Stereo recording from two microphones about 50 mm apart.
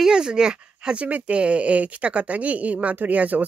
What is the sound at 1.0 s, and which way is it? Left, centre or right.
Speech, right.